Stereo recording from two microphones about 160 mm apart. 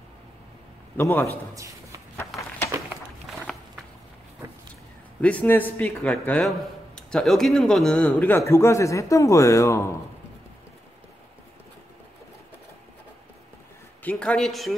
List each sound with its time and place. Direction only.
0.9 s speech: 15° left (ahead or behind)
1.5 s speech: 20° right (ahead or behind)
3.3 s walk: centre (ahead or behind)
5.2 s speech: 10° left (ahead or behind)
14.0 s speech: 5° left (ahead or behind)